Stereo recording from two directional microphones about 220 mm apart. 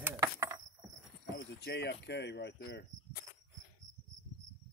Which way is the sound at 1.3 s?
50° left (ahead or behind).